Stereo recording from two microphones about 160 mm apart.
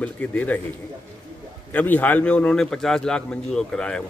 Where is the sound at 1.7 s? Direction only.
10° left (ahead or behind).